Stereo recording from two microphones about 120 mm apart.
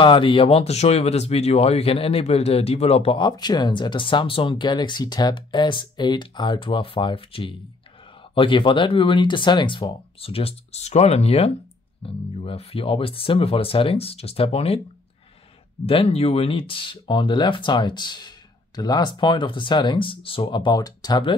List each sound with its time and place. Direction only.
0.0 s speech: 45° left (ahead or behind)
15.8 s speech: 55° left (ahead or behind); by 21.2 s 35° left (ahead or behind)